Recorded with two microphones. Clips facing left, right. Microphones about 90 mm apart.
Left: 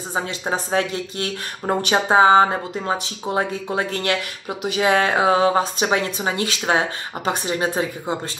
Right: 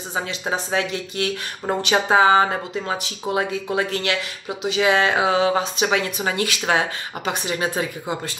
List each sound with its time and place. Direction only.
0.1 s speech: 35° left (ahead or behind)